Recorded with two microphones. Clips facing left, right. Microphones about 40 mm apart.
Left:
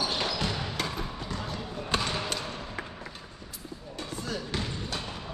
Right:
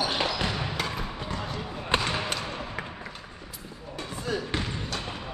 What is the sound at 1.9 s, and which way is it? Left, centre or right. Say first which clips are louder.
Basketball bounce: right 3 dB; right.